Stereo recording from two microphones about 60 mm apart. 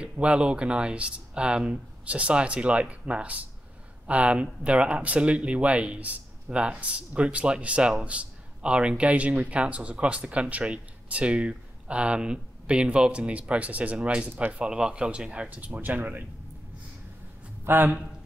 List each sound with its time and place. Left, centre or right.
0.0 s speech: centre
17.6 s a man's voice: right